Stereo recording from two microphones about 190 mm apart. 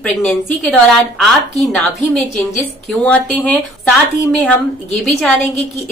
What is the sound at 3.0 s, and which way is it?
Speech, 5° left (ahead or behind).